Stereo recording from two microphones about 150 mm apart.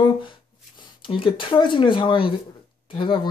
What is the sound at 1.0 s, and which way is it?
Speech, 35° left (ahead or behind).